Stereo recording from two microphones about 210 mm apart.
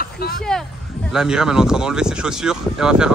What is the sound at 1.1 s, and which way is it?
Speech, 5° right (ahead or behind).